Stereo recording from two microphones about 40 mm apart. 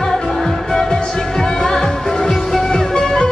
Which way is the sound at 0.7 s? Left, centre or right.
Centre.